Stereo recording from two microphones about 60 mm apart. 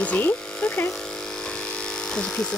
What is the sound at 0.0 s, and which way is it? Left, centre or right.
Electric shaver, left.